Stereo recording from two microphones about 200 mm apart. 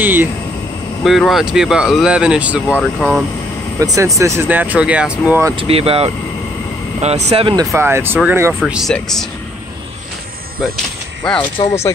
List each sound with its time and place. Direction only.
0.0 s speech: 10° right (ahead or behind)
3.8 s speech: 15° right (ahead or behind)
5.6 s speech: 30° right (ahead or behind)
7.7 s speech: 10° right (ahead or behind)
11.2 s speech: 10° left (ahead or behind)